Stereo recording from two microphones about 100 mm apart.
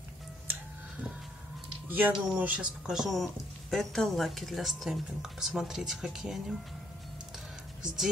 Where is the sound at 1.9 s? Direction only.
20° right (ahead or behind); by 6.5 s 5° right (ahead or behind).